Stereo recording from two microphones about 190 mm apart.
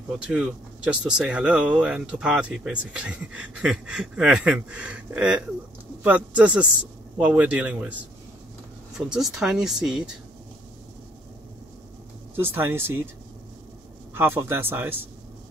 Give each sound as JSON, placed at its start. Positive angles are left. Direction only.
{"t": 0.3, "sound": "a man's voice", "side_deg": -5}
{"t": 12.4, "sound": "a man's voice", "side_deg": -10}
{"t": 14.1, "sound": "a man's voice", "side_deg": -10}